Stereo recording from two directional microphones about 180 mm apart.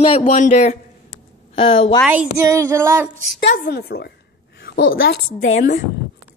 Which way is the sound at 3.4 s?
75° left (ahead or behind).